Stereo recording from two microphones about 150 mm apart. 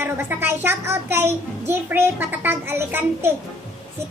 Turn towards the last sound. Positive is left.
turn(degrees=-15)  # may be behind; listen again after turning